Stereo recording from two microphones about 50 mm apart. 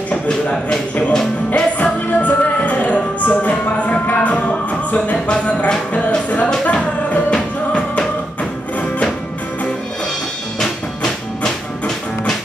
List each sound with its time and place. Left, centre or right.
1.1 s music: centre
1.8 s music: left